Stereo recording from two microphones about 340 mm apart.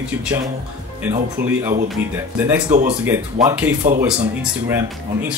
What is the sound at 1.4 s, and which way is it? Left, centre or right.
Speech, right.